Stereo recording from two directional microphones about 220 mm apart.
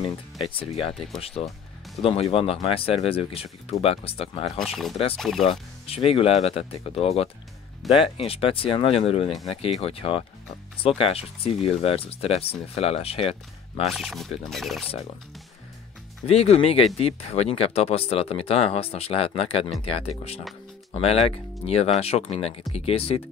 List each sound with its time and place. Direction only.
0.0 s speech: 25° left (ahead or behind)
4.6 s speech: centre (ahead or behind)
5.5 s speech: 25° left (ahead or behind)
7.8 s speech: centre (ahead or behind)
8.2 s speech: 25° left (ahead or behind)
13.8 s speech: centre (ahead or behind)
16.3 s speech: 30° left (ahead or behind)